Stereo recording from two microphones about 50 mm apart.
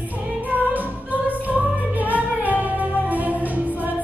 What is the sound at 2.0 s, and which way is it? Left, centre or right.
Music, right.